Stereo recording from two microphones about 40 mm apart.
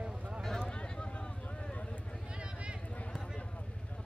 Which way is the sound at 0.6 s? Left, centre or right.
Left.